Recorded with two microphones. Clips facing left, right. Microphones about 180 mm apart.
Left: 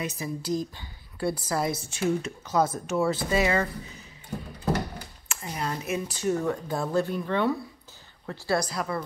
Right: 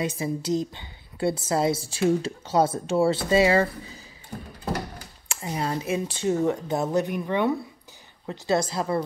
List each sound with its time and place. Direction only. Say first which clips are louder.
0.0 s a woman's voice: right 5 dB; 30° right (ahead or behind)
5.3 s a woman's voice: right 4 dB; 25° right (ahead or behind)